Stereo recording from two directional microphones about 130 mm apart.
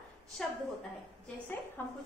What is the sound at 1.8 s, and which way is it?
Speech, 15° left (ahead or behind).